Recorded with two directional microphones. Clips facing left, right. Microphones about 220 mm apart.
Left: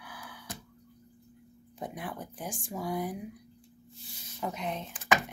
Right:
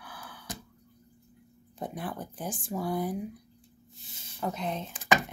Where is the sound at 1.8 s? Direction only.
10° left (ahead or behind).